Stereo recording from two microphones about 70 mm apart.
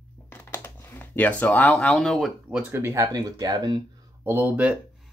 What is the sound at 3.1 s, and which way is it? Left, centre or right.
Speech, right.